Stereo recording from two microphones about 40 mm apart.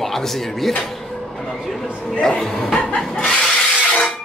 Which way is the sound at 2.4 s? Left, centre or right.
Centre.